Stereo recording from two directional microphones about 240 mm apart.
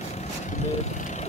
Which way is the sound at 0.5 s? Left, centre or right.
Left.